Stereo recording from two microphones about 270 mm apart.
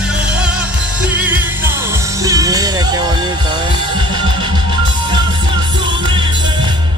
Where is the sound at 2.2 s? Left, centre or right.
Centre.